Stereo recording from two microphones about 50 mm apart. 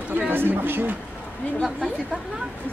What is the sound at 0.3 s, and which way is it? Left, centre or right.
Speech, right.